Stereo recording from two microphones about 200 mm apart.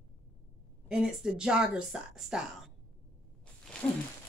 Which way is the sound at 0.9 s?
5° right (ahead or behind).